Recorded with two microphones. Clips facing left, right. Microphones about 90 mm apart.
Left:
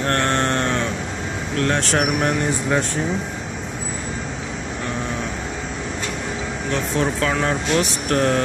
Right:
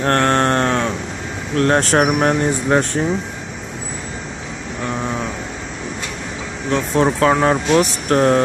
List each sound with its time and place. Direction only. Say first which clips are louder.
0.0 s a sound: right 5 dB; 40° right (ahead or behind)
1.6 s speech: right 6 dB; 40° right (ahead or behind)
7.0 s speech: right 8 dB; 35° right (ahead or behind)